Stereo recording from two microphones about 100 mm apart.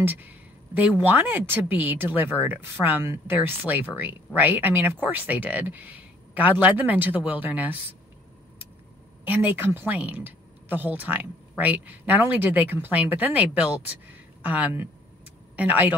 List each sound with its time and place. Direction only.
0.0 s speech: 20° right (ahead or behind)
9.2 s speech: 20° right (ahead or behind)